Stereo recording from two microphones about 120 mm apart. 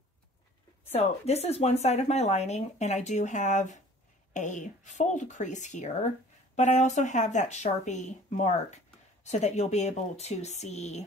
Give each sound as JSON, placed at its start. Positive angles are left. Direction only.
{"t": 0.9, "sound": "speech", "side_deg": 60}